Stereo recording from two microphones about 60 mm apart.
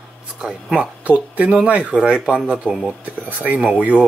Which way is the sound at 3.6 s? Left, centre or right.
Centre.